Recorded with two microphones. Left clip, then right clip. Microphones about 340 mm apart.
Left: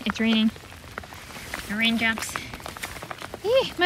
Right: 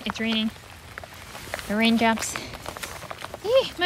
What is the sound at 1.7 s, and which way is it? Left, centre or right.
Speech, centre.